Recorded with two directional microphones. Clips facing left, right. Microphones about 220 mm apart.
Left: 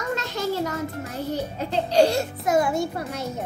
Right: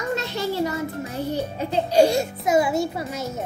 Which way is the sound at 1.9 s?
10° right (ahead or behind).